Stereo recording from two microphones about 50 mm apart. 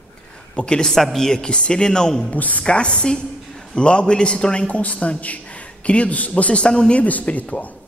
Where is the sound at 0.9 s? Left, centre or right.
Centre.